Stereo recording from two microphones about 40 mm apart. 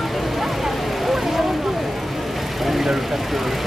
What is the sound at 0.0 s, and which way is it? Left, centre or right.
Vehicle, centre.